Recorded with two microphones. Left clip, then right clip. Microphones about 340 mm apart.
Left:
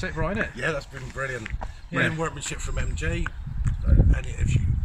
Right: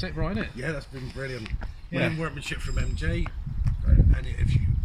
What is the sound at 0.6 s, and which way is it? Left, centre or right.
Speech, left.